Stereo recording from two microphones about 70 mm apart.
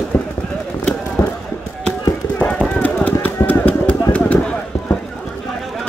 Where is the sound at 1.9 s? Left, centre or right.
Left.